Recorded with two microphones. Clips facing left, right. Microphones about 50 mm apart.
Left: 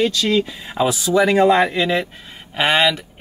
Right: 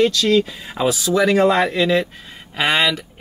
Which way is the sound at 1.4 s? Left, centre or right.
Left.